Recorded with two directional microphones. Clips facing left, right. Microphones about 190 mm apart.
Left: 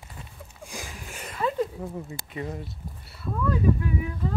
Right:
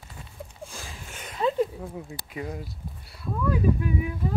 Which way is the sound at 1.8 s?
Centre (ahead or behind).